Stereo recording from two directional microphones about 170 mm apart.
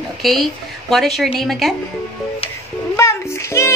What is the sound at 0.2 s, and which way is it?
A woman's voice, centre (ahead or behind).